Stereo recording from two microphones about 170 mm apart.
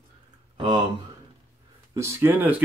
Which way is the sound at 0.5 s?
25° right (ahead or behind).